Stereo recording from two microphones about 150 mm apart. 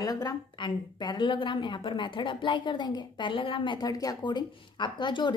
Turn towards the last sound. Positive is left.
turn(degrees=30)  # may be behind; listen again after turning